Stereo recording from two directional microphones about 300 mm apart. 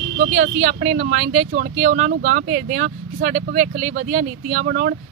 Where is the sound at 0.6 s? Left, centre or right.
Right.